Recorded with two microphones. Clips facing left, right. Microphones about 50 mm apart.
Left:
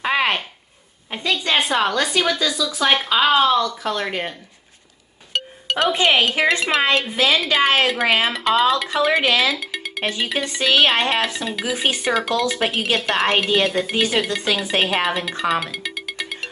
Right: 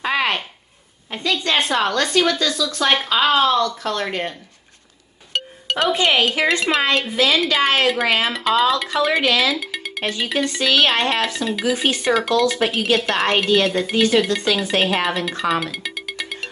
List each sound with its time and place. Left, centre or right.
0.0 s a sound: centre
1.1 s a woman's voice: centre
5.3 s music: centre
6.4 s a woman's voice: centre
9.2 s a woman's voice: centre
9.5 s music: centre
10.1 s a woman's voice: centre